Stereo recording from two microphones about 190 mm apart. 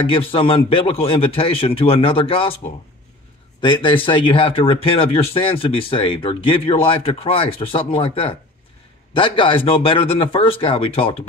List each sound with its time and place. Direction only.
0.0 s speech: 30° left (ahead or behind)